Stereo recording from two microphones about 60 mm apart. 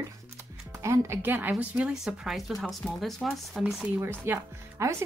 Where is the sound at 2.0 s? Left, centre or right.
Centre.